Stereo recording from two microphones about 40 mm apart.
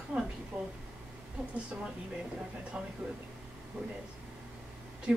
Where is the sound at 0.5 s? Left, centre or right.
Right.